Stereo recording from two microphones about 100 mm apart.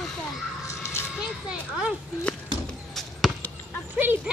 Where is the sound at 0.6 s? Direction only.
25° left (ahead or behind).